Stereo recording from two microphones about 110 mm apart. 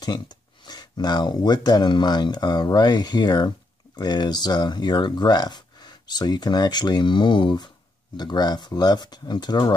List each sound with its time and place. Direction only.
0.0 s speech: 40° left (ahead or behind)